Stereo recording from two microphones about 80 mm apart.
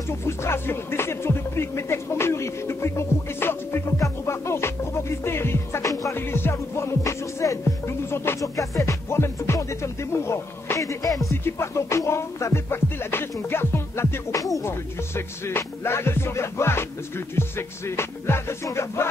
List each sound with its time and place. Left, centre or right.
0.3 s music: left
6.1 s music: left
11.4 s music: left
14.3 s music: left
14.7 s music: left